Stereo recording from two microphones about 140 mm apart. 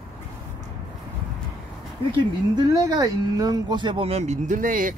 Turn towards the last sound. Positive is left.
turn(degrees=-70)  # may be behind; listen again after turning